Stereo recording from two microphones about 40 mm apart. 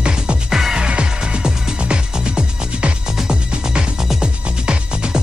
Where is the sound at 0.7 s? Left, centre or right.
Right.